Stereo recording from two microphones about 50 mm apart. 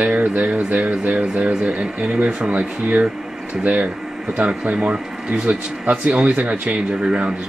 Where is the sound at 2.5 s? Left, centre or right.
Right.